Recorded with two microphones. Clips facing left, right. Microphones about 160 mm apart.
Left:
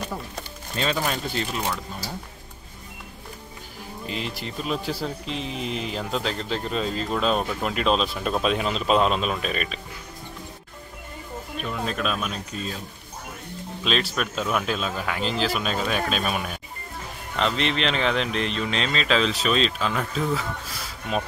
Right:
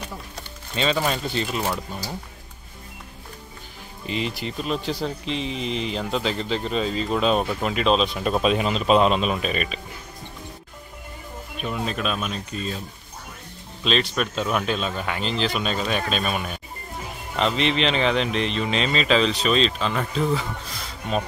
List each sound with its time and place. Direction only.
0.7 s speech: centre (ahead or behind)
4.0 s speech: centre (ahead or behind)
11.6 s speech: 5° right (ahead or behind)
13.8 s speech: 5° left (ahead or behind)